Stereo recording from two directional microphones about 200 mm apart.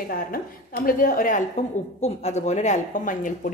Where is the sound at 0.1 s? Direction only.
45° left (ahead or behind).